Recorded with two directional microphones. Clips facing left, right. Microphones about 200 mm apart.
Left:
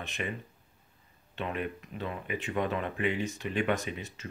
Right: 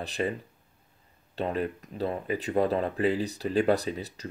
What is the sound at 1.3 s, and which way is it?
Speech, 35° right (ahead or behind).